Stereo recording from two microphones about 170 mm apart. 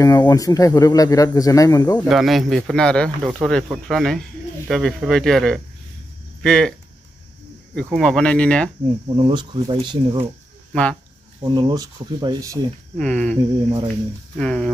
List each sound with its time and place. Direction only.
0.0 s speech: 20° left (ahead or behind)
2.0 s speech: centre (ahead or behind)
7.7 s speech: 5° left (ahead or behind)
9.1 s speech: 25° right (ahead or behind)
10.7 s speech: 5° left (ahead or behind)
11.4 s speech: 25° right (ahead or behind)
12.9 s speech: 5° left (ahead or behind)
14.4 s speech: 5° left (ahead or behind)